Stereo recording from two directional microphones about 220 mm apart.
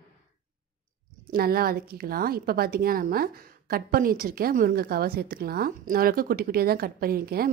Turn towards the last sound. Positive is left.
turn(degrees=-40)  # may be behind; listen again after turning